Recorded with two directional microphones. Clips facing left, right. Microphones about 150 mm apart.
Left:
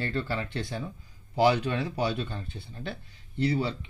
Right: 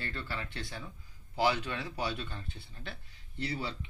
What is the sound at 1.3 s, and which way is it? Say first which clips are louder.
Speech: left 7 dB; 25° left (ahead or behind).